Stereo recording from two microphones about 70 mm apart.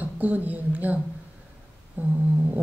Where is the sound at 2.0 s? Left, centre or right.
Right.